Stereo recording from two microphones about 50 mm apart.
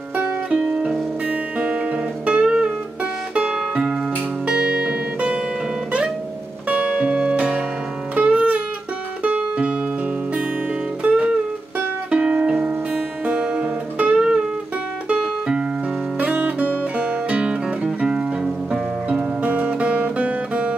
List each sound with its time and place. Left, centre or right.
0.5 s music: centre
1.3 s music: right
6.7 s music: right
11.0 s music: right
14.1 s music: centre
16.2 s music: right
19.0 s music: right